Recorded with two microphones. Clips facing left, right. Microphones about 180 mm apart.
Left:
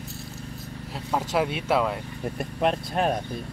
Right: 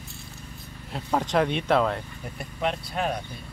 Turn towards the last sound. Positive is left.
turn(degrees=45)  # may be behind; listen again after turning